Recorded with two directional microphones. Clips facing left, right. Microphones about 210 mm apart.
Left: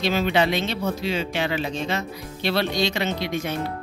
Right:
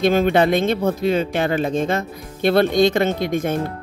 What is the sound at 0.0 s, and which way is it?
Speech, 50° right (ahead or behind).